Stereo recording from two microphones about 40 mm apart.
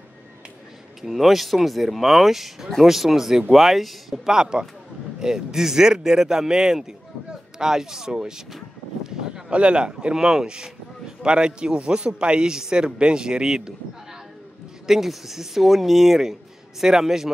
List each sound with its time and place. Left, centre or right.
1.0 s speech: centre
4.3 s a man's voice: centre
9.0 s a sound: centre
9.5 s speech: right
14.9 s speech: centre